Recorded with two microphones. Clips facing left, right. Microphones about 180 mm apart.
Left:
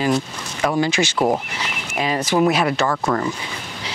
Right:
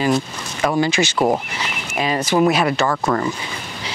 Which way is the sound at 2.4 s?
10° right (ahead or behind).